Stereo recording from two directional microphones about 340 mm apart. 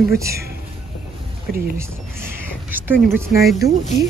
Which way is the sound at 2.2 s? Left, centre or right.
Centre.